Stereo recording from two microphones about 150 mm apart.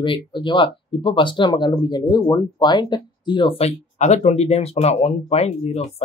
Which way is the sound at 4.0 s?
50° left (ahead or behind).